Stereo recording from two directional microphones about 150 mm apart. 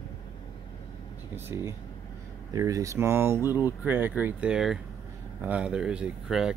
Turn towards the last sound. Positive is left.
turn(degrees=-5)  # may be behind; listen again after turning